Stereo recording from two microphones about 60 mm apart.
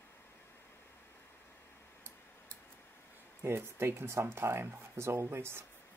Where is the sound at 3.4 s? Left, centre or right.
Right.